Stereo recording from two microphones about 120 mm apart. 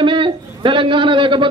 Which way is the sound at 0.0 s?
45° right (ahead or behind).